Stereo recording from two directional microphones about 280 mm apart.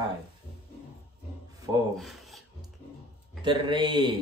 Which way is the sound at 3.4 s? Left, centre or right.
Centre.